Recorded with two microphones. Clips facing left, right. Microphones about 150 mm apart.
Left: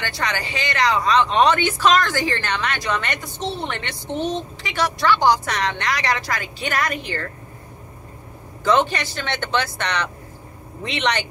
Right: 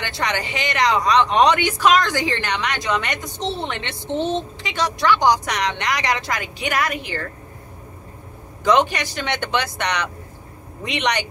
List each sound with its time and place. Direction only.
0.0 s speech: 20° right (ahead or behind)
8.6 s speech: 15° right (ahead or behind)